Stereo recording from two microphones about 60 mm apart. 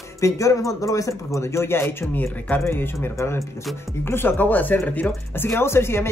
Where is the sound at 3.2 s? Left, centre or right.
Left.